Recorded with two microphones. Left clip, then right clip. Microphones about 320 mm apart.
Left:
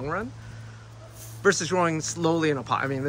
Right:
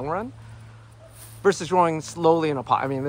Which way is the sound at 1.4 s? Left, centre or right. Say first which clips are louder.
Right 3 dB; centre.